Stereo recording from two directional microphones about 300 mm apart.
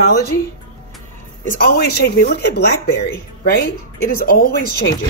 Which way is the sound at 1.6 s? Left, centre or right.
Left.